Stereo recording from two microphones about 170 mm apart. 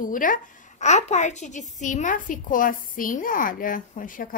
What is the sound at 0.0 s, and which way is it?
Speech, 50° left (ahead or behind).